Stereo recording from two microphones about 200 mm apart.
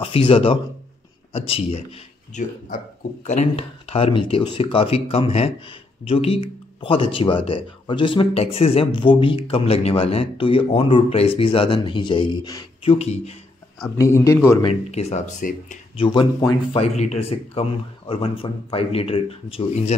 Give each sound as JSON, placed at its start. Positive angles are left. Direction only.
{"t": 0.0, "sound": "a man's voice", "side_deg": 25}
{"t": 12.9, "sound": "a man's voice", "side_deg": 30}
{"t": 13.9, "sound": "a man's voice", "side_deg": 15}
{"t": 14.6, "sound": "a man's voice", "side_deg": 30}
{"t": 16.0, "sound": "speech", "side_deg": 25}